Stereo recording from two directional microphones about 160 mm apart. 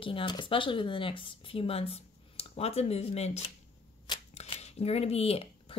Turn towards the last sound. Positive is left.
turn(degrees=40)  # may be behind; listen again after turning